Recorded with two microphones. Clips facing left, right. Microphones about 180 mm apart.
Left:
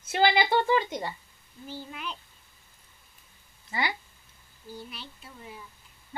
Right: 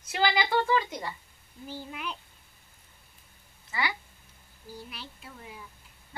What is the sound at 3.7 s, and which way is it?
Speech, 30° left (ahead or behind).